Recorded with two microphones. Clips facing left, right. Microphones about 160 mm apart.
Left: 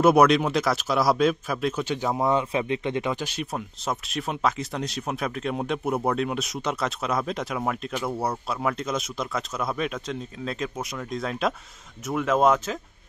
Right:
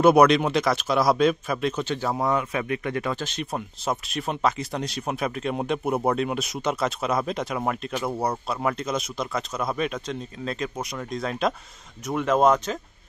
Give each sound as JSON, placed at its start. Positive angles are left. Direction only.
{"t": 0.0, "sound": "speech", "side_deg": 0}
{"t": 3.5, "sound": "speech", "side_deg": 0}